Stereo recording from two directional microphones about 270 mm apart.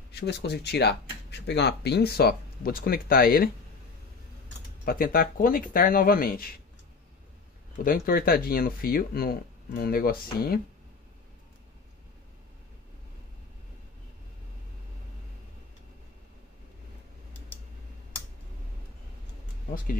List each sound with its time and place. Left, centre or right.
0.1 s speech: left
4.8 s speech: left
7.8 s speech: left